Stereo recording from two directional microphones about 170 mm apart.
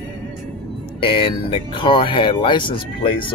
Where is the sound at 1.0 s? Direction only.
30° left (ahead or behind).